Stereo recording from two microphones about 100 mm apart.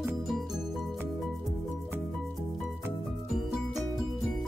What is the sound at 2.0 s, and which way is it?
Music, 5° left (ahead or behind).